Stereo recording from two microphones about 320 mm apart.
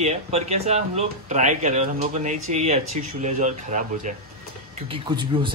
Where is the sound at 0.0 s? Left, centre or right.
Right.